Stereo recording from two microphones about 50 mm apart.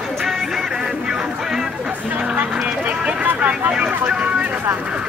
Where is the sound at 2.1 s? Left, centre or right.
Right.